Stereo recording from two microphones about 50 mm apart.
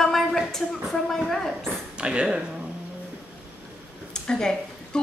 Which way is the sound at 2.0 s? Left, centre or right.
Centre.